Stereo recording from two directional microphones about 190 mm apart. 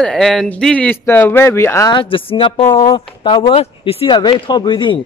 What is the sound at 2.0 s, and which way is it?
Speech, 30° left (ahead or behind).